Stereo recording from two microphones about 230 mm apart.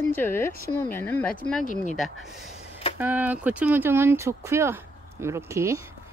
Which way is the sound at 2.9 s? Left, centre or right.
Centre.